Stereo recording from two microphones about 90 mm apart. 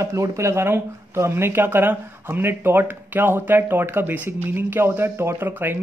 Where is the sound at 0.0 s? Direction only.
35° right (ahead or behind).